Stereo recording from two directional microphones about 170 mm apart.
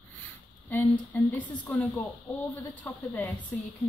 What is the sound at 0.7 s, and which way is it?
Speech, 10° left (ahead or behind).